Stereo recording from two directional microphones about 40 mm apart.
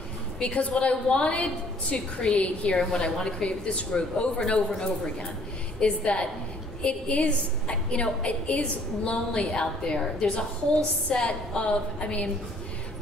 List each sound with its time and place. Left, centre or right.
0.4 s a woman's voice: left
2.8 s a woman's voice: centre
5.8 s a woman's voice: left